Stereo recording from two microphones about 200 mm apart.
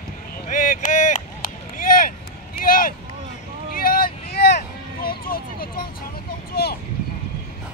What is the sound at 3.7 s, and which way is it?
Vehicle, 45° left (ahead or behind).